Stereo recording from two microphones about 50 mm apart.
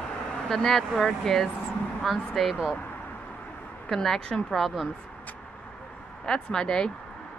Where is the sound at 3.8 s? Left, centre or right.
Centre.